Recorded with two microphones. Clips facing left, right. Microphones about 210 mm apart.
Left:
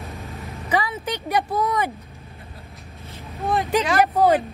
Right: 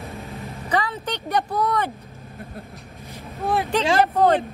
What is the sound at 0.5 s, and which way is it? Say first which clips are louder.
Vehicle: left 1 dB; 10° left (ahead or behind).